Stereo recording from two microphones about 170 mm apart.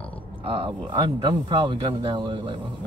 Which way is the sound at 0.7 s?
25° right (ahead or behind).